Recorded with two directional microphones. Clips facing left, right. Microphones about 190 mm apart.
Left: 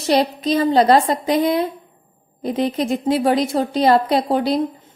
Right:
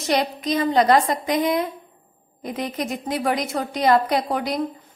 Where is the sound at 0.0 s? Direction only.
30° left (ahead or behind).